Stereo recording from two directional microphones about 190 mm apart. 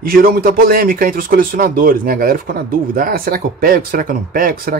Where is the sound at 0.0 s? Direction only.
50° right (ahead or behind).